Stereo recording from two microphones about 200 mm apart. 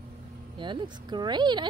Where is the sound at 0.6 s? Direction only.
25° right (ahead or behind).